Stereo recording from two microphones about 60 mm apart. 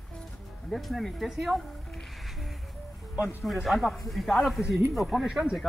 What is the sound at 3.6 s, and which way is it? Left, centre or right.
Speech, centre.